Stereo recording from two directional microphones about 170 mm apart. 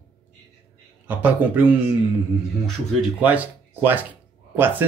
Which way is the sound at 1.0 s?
10° right (ahead or behind).